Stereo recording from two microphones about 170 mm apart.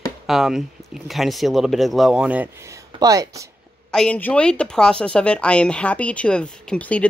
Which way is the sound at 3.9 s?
5° left (ahead or behind).